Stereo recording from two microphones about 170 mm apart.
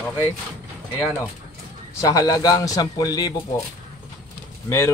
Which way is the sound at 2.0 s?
20° left (ahead or behind).